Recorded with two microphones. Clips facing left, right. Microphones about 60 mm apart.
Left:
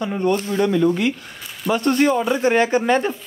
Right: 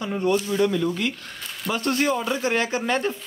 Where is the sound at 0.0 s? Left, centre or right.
Centre.